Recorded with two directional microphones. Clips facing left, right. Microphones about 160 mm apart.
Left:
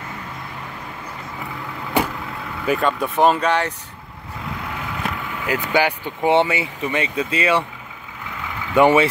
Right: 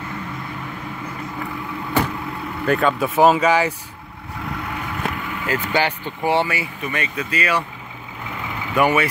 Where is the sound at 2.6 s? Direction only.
Centre (ahead or behind).